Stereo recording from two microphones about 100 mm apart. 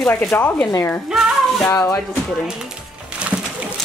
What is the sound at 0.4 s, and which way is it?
Speech, 15° left (ahead or behind).